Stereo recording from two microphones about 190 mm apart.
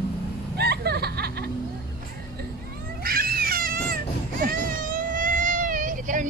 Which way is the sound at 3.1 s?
50° right (ahead or behind).